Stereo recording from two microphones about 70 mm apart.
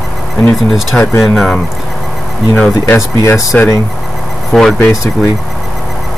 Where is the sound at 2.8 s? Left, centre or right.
Left.